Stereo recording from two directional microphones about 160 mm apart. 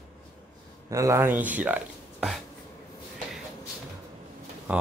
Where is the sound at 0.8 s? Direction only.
20° right (ahead or behind).